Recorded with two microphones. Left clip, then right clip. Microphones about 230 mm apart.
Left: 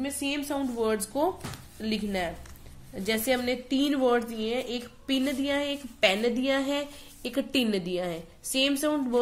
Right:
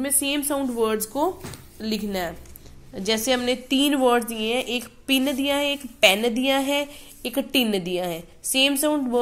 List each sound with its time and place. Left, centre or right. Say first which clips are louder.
0.0 s a woman's voice: right 6 dB; right; by 9.2 s centre